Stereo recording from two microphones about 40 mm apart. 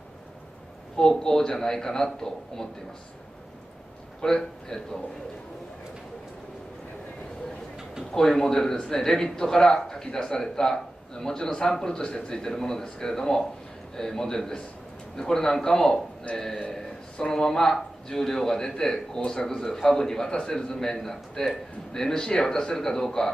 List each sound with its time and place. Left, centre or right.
0.9 s a man's voice: centre
4.2 s a man's voice: centre
8.1 s a man's voice: centre
16.3 s a man's voice: left
16.7 s a man's voice: centre